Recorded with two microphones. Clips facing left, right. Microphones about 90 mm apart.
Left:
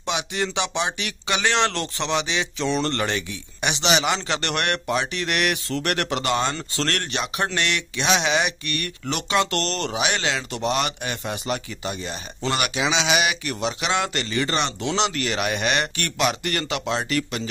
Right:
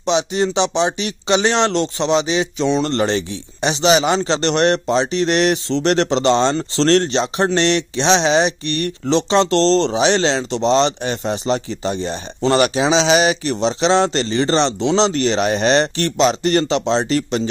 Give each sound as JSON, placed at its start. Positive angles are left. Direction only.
{"t": 0.0, "sound": "speech", "side_deg": -25}